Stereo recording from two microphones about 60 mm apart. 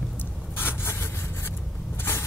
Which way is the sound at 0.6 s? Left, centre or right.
Left.